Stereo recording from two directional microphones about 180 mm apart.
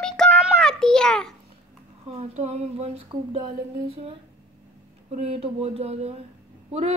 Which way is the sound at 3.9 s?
35° right (ahead or behind).